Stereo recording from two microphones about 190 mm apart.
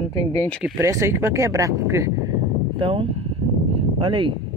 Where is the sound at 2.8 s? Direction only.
30° right (ahead or behind).